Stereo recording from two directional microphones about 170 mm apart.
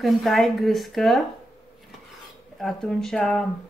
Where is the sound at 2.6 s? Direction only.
Centre (ahead or behind).